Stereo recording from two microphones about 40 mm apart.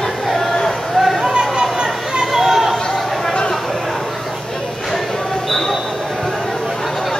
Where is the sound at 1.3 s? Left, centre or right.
Centre.